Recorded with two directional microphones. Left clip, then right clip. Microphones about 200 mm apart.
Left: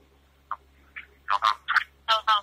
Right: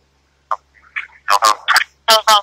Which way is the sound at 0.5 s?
50° right (ahead or behind).